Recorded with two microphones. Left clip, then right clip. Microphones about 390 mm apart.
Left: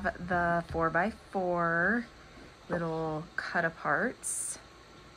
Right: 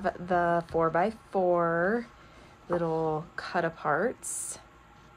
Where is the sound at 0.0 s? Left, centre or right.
Right.